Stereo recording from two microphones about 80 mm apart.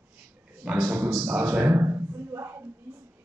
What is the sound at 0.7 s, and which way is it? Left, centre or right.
Speech, right.